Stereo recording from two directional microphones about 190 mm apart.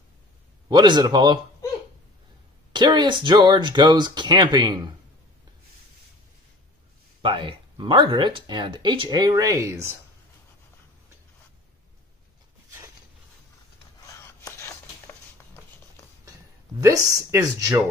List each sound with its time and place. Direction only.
0.7 s speech: 25° right (ahead or behind)
2.7 s speech: 20° right (ahead or behind)
7.2 s speech: 25° right (ahead or behind)
14.0 s a sound: 15° left (ahead or behind)
17.3 s speech: 15° right (ahead or behind)